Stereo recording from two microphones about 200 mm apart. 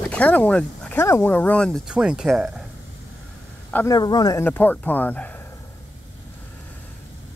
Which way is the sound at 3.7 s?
15° left (ahead or behind).